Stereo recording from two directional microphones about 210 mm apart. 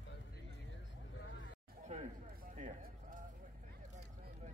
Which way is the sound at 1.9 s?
35° right (ahead or behind).